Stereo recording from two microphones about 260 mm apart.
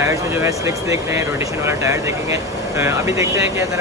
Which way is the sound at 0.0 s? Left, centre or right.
Centre.